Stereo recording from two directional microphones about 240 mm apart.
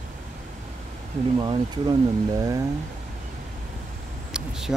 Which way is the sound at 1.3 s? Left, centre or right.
Centre.